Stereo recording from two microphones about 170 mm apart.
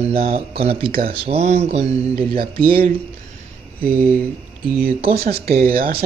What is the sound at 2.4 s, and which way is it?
Speech, 60° right (ahead or behind).